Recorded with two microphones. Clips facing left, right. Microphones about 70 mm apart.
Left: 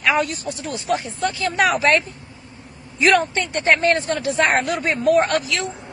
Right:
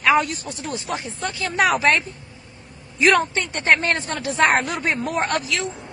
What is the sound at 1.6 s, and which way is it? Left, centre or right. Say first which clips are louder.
Speech: left 1 dB; right.